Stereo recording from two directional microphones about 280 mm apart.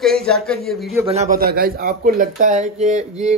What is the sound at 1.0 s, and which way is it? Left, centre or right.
A man's voice, right.